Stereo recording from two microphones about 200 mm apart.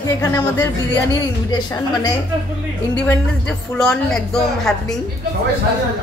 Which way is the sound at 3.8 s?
5° left (ahead or behind).